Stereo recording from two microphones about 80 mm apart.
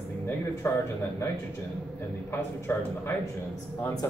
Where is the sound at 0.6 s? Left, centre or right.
Left.